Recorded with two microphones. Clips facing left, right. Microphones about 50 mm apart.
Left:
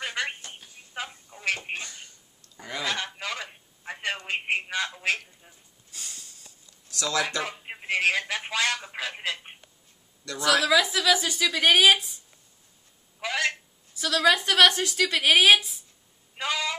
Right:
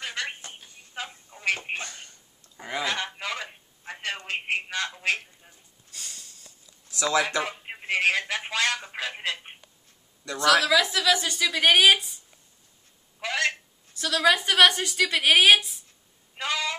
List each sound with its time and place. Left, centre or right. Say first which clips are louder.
0.0 s telephone: left 2 dB; centre
2.5 s goose: right 3 dB; right
2.8 s fowl: right 1 dB; centre
3.2 s telephone: right 1 dB; centre
3.8 s telephone: left 2 dB; centre
5.9 s a sound: even; centre
6.9 s speech: right 3 dB; right
7.4 s telephone: even; centre
10.4 s a woman's voice: right 1 dB; centre
13.2 s telephone: right 1 dB; centre
13.9 s a woman's voice: even; centre
16.3 s a sound: even; centre